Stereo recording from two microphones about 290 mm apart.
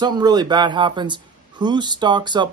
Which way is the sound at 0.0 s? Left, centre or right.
Centre.